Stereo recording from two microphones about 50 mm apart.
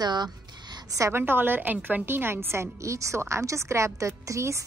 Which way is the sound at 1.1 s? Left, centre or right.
Right.